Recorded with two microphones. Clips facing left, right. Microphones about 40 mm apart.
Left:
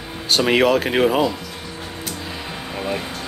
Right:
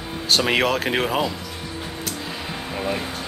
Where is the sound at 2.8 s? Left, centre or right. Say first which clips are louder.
Left 1 dB; centre.